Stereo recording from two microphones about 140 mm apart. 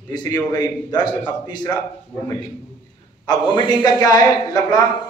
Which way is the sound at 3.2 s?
35° left (ahead or behind).